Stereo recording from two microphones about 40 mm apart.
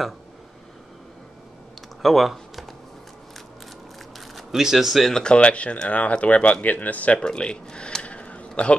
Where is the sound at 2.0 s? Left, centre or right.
Centre.